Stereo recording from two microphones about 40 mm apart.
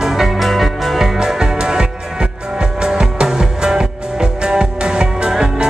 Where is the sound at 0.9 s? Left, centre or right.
Centre.